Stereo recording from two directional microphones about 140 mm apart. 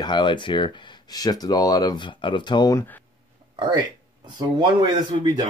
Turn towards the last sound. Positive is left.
turn(degrees=-30)  # may be behind; listen again after turning